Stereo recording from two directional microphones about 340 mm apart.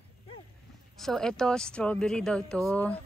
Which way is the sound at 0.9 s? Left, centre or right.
Centre.